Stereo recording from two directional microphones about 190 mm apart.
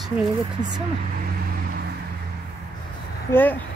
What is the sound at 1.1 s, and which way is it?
Vehicle, 50° right (ahead or behind).